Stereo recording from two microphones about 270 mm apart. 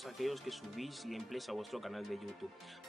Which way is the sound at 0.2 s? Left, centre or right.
Centre.